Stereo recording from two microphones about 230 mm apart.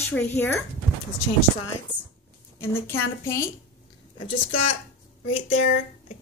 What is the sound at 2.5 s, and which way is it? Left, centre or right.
Speech, centre.